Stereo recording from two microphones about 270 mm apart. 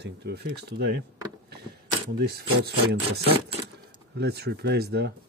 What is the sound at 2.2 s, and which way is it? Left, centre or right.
Speech, right.